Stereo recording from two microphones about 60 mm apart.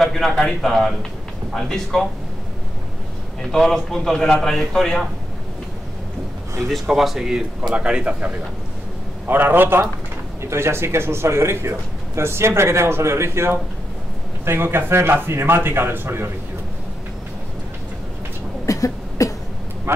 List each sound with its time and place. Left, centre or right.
0.0 s a man's voice: centre
3.5 s a man's voice: centre
6.7 s a man's voice: centre
7.7 s speech: centre
9.3 s a man's voice: right
18.7 s cough: left